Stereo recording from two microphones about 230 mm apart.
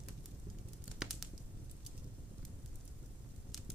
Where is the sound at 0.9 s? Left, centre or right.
Centre.